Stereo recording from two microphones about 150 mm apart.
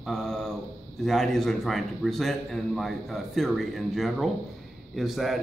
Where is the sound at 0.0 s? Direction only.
5° left (ahead or behind).